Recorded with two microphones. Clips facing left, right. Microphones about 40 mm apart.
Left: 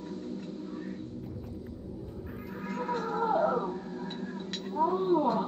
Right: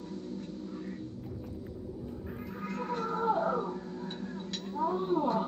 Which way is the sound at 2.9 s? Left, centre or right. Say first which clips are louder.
Left 2 dB; left.